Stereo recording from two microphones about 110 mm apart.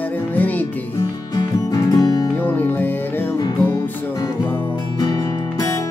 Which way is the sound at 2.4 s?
15° left (ahead or behind).